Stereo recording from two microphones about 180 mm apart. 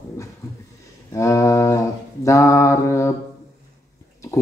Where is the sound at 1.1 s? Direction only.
15° left (ahead or behind).